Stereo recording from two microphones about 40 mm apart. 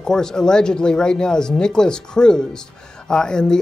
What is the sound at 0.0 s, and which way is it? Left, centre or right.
Speech, centre.